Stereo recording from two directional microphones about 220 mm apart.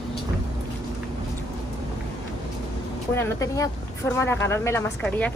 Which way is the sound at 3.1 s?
15° left (ahead or behind).